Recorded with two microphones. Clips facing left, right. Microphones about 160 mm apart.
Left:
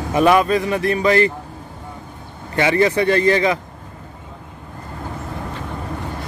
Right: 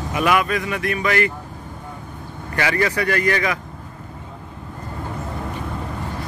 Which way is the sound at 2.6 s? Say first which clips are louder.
Left 5 dB; 25° left (ahead or behind).